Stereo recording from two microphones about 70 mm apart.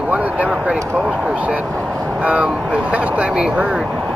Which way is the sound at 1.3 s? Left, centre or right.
Right.